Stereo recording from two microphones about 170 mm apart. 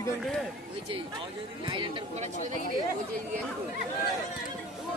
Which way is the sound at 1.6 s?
30° right (ahead or behind).